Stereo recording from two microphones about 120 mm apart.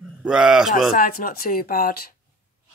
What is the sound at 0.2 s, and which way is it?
Speech, 5° right (ahead or behind).